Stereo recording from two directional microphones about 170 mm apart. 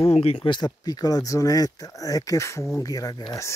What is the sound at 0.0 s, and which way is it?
Speech, 35° left (ahead or behind).